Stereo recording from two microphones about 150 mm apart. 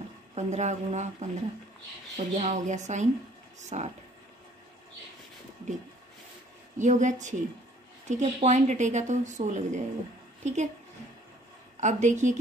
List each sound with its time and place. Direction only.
0.3 s a woman's voice: 50° right (ahead or behind)
6.8 s a woman's voice: 55° right (ahead or behind)
11.7 s a woman's voice: 55° right (ahead or behind)